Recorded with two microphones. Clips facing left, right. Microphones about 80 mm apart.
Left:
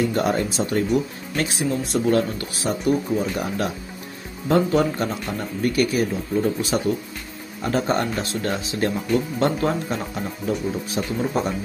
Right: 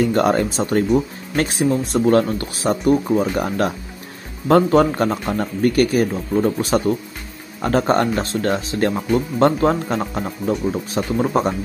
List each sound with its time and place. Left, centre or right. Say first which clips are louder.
0.0 s speech: right 5 dB; right